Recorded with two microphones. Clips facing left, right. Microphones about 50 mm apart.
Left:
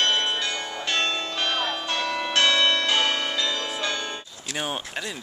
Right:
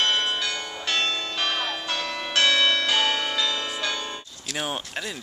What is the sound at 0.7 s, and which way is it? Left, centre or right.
Church bell, centre.